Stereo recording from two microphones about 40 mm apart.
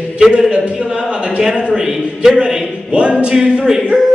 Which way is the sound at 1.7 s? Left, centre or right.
Centre.